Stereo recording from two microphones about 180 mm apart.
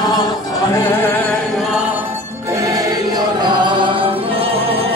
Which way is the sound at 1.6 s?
5° right (ahead or behind).